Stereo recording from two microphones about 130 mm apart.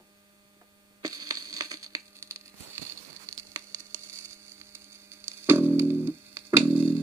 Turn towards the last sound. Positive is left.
turn(degrees=-15)  # may be behind; listen again after turning